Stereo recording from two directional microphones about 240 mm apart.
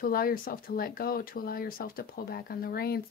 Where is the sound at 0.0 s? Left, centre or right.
Left.